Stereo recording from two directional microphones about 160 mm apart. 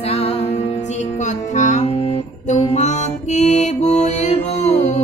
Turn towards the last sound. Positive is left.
turn(degrees=45)  # may be behind; listen again after turning